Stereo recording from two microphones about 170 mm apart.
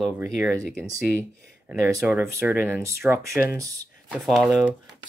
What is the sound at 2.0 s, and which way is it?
Speech, 10° right (ahead or behind).